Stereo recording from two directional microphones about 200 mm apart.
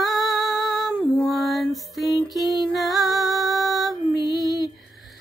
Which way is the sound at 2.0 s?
20° left (ahead or behind).